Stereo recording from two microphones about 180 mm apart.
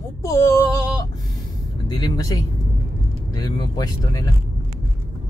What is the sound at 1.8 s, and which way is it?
Speech, 20° left (ahead or behind).